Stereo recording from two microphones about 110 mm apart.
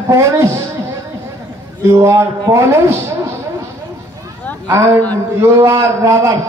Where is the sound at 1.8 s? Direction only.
25° right (ahead or behind).